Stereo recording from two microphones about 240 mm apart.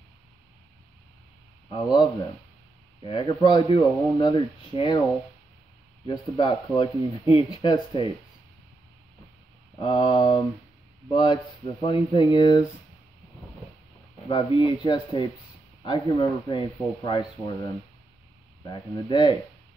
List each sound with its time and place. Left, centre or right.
1.7 s speech: centre
6.3 s speech: centre
9.8 s speech: centre
14.3 s speech: centre
18.6 s speech: centre